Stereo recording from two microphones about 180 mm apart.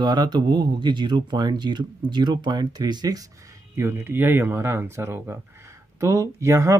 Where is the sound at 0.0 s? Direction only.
25° right (ahead or behind).